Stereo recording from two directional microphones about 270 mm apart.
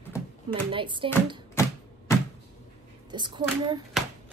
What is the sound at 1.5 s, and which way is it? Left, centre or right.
Typewriter, centre.